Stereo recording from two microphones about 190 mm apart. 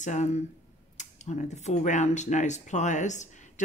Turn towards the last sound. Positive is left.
turn(degrees=40)  # may be behind; listen again after turning